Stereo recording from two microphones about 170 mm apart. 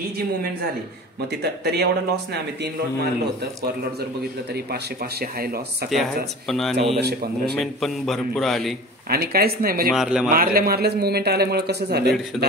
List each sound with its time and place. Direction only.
1.4 s a man's voice: 75° right (ahead or behind)
5.9 s a man's voice: centre (ahead or behind)
7.0 s a man's voice: 70° right (ahead or behind)
7.5 s a man's voice: centre (ahead or behind)
9.1 s speech: 65° right (ahead or behind)
9.9 s a man's voice: 5° right (ahead or behind)
10.3 s a man's voice: 60° right (ahead or behind)